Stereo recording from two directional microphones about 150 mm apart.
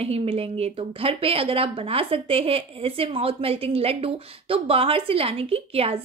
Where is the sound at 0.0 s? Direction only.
40° right (ahead or behind).